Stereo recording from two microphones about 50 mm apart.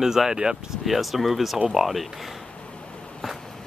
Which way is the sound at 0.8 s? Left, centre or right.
Centre.